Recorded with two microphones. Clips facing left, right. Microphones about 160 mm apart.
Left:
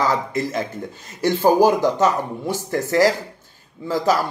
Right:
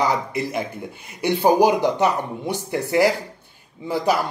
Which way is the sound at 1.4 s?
15° right (ahead or behind).